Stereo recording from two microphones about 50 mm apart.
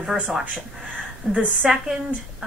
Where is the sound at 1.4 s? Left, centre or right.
Centre.